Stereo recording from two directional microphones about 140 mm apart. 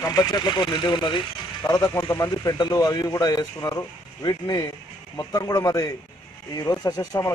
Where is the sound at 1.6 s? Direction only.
20° left (ahead or behind).